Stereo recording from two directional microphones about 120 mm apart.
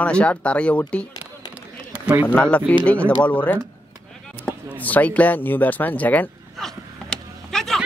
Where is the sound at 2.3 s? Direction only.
10° left (ahead or behind).